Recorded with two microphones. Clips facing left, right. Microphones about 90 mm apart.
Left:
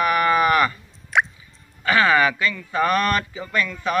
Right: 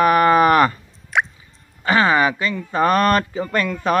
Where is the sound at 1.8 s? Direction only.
30° right (ahead or behind).